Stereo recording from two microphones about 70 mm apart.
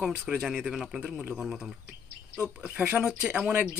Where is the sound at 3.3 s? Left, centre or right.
Right.